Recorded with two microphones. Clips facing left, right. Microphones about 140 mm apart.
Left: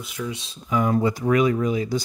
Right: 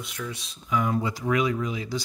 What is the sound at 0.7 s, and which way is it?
Speech, 45° left (ahead or behind).